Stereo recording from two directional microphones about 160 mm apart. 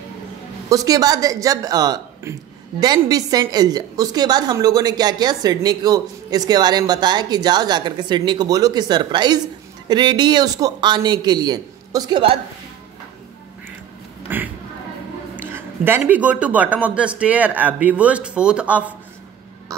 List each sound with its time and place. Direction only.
0.7 s a woman's voice: 20° right (ahead or behind)
14.2 s a sound: 10° right (ahead or behind)
15.3 s a man's voice: 10° right (ahead or behind)